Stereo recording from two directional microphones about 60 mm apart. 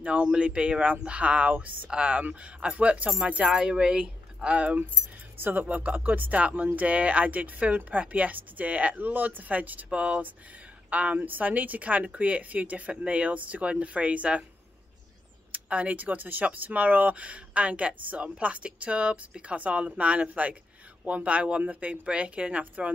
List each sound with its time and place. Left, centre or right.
0.0 s speech: centre
5.4 s speech: right
15.5 s speech: right